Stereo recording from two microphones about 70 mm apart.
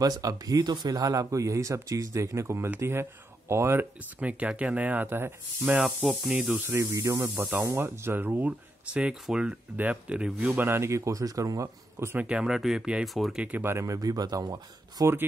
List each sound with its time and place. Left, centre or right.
0.0 s speech: right
4.2 s speech: right
6.0 s speech: centre
6.4 s speech: right
6.8 s speech: right
7.2 s speech: right; by 10.5 s centre
10.5 s speech: right
12.2 s speech: centre
13.6 s speech: right
13.8 s speech: right